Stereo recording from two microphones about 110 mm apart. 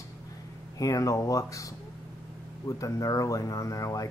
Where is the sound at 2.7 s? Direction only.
30° left (ahead or behind).